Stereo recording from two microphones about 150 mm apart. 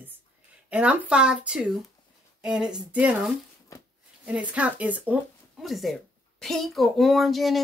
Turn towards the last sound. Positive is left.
turn(degrees=0)  # may be behind; listen again after turning